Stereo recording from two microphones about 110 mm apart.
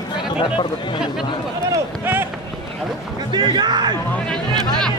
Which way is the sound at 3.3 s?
40° right (ahead or behind).